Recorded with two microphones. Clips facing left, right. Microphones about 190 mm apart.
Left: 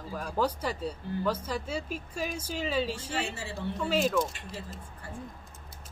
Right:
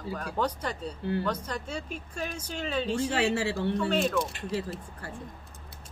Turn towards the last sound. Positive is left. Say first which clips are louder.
# right 8 dB
turn(degrees=-70)  # may be behind; listen again after turning